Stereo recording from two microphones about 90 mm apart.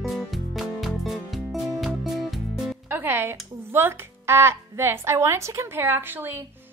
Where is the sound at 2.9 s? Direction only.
25° right (ahead or behind).